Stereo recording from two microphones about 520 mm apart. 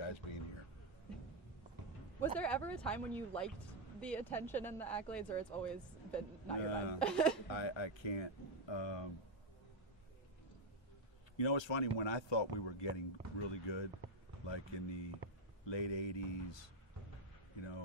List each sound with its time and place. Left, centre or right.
0.0 s a sound: left
2.1 s speech: centre
7.4 s speech: left
11.3 s speech: left